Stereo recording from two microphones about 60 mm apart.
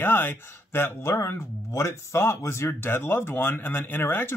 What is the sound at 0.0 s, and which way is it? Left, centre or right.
Speech, left.